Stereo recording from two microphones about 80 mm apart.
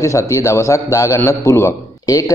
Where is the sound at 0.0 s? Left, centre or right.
Left.